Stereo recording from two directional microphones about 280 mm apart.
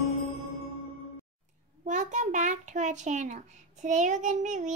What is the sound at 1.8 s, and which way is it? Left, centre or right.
A child's voice, right.